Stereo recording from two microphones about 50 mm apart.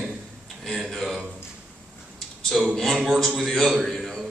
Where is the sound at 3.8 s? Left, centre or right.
Centre.